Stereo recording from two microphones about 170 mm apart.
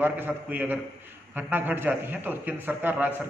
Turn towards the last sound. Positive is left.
turn(degrees=-10)  # may be behind; listen again after turning